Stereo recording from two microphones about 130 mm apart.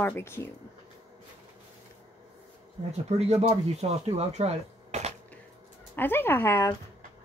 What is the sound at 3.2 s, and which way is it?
Speech, 55° right (ahead or behind).